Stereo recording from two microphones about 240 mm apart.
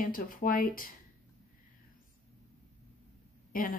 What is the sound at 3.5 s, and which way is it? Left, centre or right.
Speech, left.